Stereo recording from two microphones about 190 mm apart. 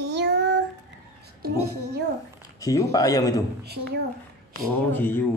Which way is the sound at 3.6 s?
55° right (ahead or behind).